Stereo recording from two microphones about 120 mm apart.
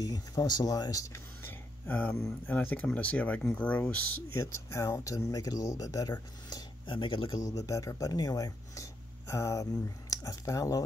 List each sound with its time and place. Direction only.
0.0 s speech: 30° left (ahead or behind); by 4.0 s 10° left (ahead or behind)
4.4 s speech: 25° left (ahead or behind)
6.5 s speech: 40° left (ahead or behind); by 10.8 s 25° left (ahead or behind)